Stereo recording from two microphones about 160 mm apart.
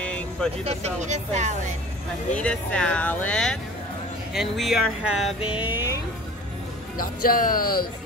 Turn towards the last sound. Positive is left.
turn(degrees=65)  # may be behind; listen again after turning